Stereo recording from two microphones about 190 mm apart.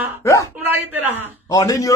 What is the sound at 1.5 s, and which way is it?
Speech, 15° left (ahead or behind).